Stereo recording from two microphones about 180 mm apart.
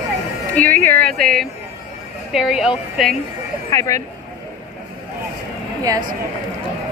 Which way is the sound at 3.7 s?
20° left (ahead or behind).